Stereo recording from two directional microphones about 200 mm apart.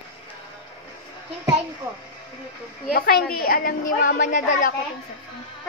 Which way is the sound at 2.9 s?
50° left (ahead or behind).